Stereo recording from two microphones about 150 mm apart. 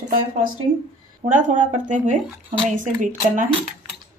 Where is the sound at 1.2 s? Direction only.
60° right (ahead or behind).